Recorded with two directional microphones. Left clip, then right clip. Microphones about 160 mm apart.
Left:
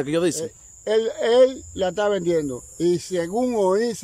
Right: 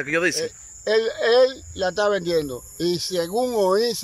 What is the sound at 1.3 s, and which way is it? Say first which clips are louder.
Speech: left 1 dB; 40° left (ahead or behind).